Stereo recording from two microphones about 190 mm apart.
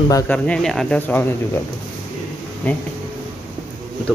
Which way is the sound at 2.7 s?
10° left (ahead or behind).